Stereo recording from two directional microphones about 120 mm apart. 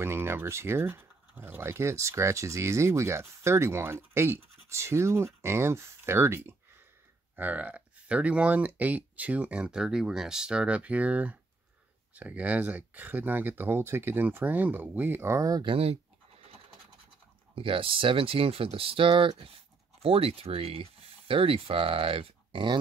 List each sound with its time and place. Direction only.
0.0 s speech: 20° right (ahead or behind)
15.6 s speech: 50° right (ahead or behind)
17.6 s speech: 50° right (ahead or behind)